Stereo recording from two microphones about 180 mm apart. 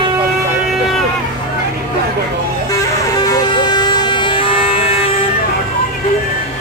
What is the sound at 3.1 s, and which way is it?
Vehicle, 20° left (ahead or behind).